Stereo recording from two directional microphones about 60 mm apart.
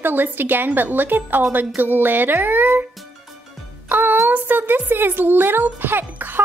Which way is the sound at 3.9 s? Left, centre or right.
Right.